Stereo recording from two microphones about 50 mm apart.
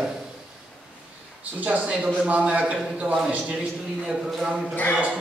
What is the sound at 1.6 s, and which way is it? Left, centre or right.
Speech, right.